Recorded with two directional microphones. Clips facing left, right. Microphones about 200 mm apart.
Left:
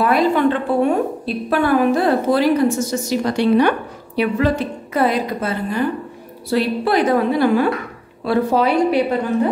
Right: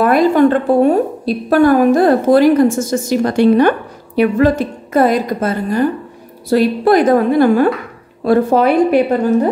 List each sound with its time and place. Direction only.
0.0 s a woman's voice: 50° right (ahead or behind)